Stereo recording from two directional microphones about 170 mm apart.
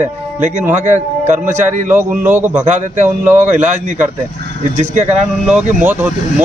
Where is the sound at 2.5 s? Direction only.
45° right (ahead or behind).